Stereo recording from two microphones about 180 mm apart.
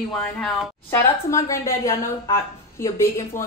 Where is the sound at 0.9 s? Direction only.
15° left (ahead or behind).